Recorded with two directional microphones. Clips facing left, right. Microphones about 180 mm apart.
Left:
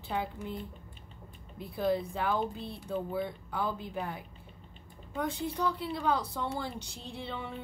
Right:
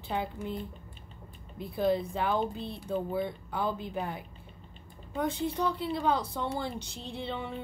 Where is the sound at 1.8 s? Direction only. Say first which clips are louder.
Right 2 dB; 20° right (ahead or behind).